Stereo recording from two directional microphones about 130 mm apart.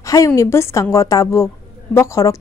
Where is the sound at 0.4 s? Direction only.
20° left (ahead or behind).